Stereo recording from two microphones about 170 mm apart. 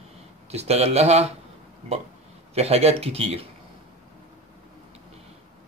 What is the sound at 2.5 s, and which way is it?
Speech, 40° right (ahead or behind).